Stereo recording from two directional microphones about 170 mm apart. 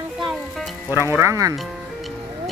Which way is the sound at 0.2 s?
Centre (ahead or behind).